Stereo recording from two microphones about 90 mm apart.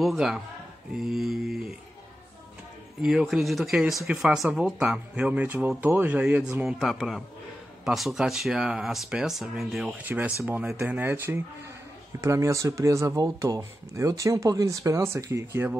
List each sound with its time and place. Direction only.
0.0 s speech: centre (ahead or behind)
3.0 s speech: 5° right (ahead or behind)
6.8 s speech: centre (ahead or behind)
10.0 s speech: 15° right (ahead or behind)
12.2 s speech: 35° right (ahead or behind)